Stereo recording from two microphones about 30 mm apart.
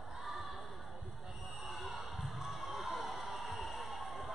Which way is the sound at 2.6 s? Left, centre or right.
Centre.